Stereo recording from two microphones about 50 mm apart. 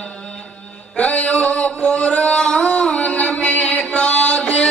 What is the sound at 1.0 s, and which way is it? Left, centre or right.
Mantra, left.